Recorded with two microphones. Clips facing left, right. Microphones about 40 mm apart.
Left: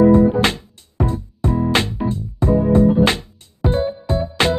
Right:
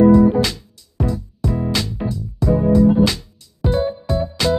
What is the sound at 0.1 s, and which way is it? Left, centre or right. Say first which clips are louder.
Music: even; left.